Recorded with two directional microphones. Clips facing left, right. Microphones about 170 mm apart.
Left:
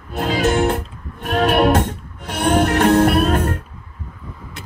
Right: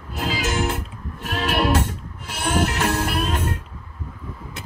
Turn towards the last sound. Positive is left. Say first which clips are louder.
# left 8 dB
turn(degrees=55)  # may be behind; listen again after turning